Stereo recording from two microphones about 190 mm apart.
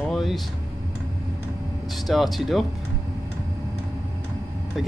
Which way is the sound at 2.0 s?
Centre (ahead or behind).